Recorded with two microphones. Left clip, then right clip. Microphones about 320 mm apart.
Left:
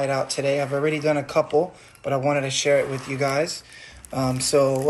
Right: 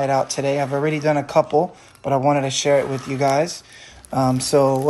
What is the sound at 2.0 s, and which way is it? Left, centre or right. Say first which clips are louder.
Speech: right 4 dB; right.